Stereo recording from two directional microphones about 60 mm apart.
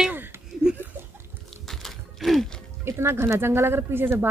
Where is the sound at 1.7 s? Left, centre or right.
Centre.